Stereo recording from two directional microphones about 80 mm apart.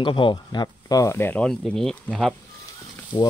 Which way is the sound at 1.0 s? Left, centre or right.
Left.